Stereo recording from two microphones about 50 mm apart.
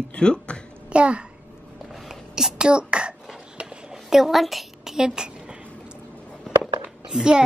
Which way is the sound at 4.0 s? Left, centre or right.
Centre.